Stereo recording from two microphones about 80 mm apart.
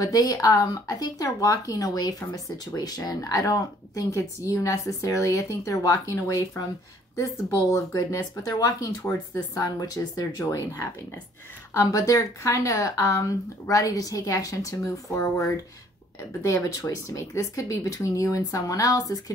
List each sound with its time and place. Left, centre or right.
0.0 s speech: left
7.7 s speech: left
13.7 s speech: left